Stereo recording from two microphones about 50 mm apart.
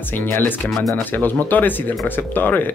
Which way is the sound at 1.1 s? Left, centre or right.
Left.